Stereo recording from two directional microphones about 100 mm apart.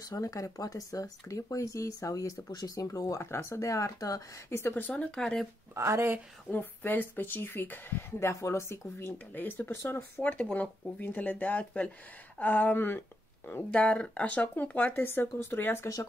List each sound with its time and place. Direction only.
0.0 s speech: 35° left (ahead or behind); by 5.5 s 5° left (ahead or behind)
5.8 s a woman's voice: 30° right (ahead or behind)
6.5 s speech: 20° left (ahead or behind)